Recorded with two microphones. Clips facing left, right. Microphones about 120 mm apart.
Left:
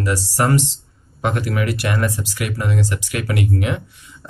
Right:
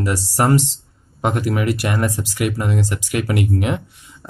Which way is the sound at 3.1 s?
35° right (ahead or behind).